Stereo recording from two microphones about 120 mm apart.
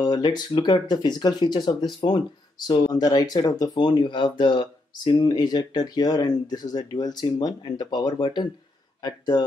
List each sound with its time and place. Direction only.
0.0 s speech: 35° left (ahead or behind)